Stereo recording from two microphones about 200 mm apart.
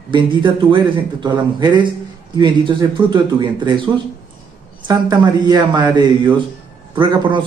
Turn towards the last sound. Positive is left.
turn(degrees=-25)  # may be behind; listen again after turning